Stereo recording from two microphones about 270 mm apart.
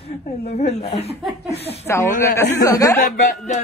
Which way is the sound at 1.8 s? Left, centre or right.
Centre.